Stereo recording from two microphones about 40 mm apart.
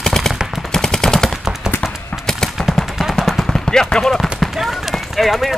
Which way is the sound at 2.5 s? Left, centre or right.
Centre.